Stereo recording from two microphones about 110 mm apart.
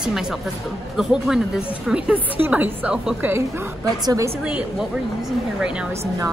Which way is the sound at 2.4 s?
15° right (ahead or behind).